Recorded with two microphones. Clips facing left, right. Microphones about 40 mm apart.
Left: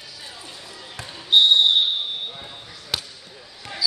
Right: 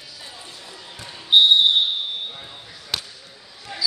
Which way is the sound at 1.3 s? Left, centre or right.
Centre.